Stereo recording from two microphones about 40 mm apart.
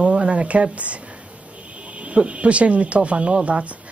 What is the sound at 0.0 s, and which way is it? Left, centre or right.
Speech, right.